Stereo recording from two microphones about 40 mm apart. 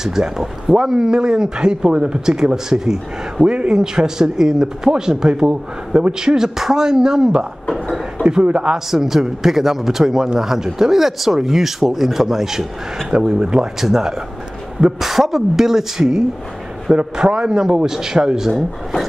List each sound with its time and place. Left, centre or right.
0.0 s a man's voice: centre; by 8.7 s right
8.7 s a man's voice: centre
13.1 s speech: right
13.7 s a man's voice: centre
18.5 s speech: centre